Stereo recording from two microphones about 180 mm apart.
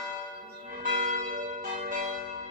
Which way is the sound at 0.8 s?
50° right (ahead or behind).